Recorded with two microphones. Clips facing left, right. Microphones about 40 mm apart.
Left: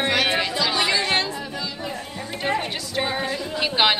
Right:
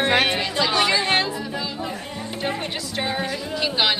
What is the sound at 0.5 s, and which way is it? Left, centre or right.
Chatter, centre.